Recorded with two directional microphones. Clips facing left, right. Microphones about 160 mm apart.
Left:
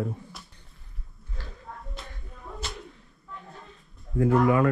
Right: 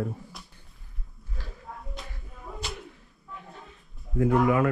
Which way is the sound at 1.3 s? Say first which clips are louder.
Even; centre (ahead or behind).